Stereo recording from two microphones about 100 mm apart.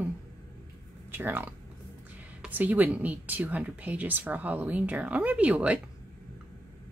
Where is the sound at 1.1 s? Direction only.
20° right (ahead or behind).